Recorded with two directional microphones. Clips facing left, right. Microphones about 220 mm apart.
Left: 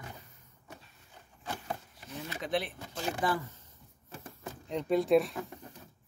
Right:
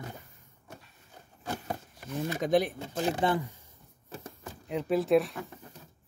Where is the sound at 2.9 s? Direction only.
35° right (ahead or behind).